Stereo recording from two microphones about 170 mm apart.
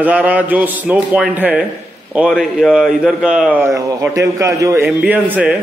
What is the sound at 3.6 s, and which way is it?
A man's voice, 20° right (ahead or behind).